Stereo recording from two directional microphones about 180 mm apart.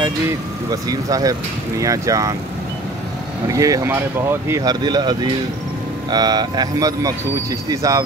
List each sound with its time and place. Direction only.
0.7 s speech: 20° right (ahead or behind)
3.4 s speech: 20° right (ahead or behind)
7.7 s cricket: 15° right (ahead or behind)